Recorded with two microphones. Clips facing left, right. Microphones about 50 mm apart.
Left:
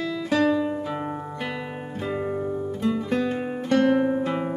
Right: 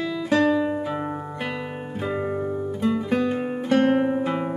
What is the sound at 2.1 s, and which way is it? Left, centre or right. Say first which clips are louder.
Music: right 1 dB; centre.